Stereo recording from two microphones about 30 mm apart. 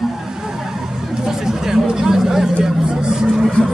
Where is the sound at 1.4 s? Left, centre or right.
Centre.